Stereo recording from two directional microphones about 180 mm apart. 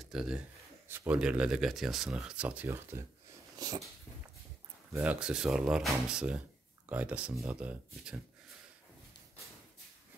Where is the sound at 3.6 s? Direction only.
20° right (ahead or behind).